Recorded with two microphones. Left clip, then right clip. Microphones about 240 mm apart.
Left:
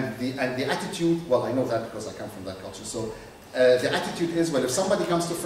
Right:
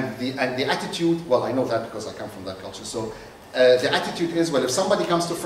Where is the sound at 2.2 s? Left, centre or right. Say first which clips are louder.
Right 3 dB; centre.